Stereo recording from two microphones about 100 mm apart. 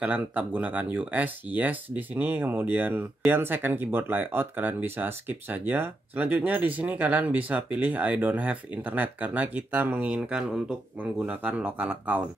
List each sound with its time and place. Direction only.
0.0 s speech: 15° right (ahead or behind)